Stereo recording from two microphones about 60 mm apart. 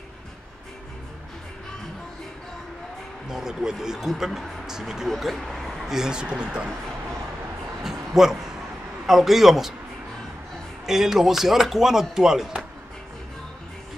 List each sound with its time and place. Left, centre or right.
3.3 s speech: centre
5.9 s speech: centre
7.8 s a sound: centre
9.0 s speech: centre
10.9 s speech: centre